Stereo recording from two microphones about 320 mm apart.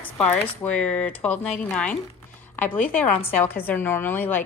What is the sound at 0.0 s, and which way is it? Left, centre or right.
A woman's voice, centre.